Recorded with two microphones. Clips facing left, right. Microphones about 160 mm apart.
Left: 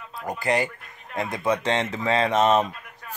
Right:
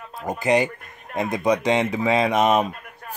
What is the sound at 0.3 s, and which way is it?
Speech, 20° right (ahead or behind).